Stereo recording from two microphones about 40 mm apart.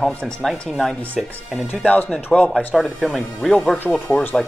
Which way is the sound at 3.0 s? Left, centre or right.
Centre.